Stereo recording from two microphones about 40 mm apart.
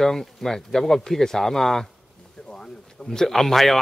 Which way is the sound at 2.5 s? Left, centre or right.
Centre.